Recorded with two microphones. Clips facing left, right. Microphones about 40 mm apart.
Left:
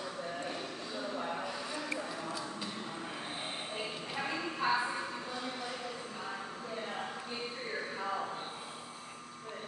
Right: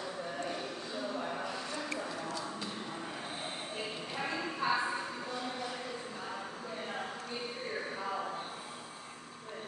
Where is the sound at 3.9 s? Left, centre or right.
Centre.